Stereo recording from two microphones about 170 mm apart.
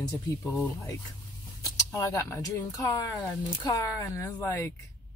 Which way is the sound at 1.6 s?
20° left (ahead or behind).